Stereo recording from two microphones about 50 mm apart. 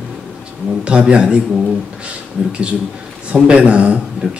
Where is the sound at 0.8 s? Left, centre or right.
Right.